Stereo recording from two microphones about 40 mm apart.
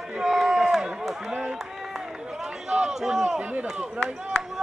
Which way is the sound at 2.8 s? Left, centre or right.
Centre.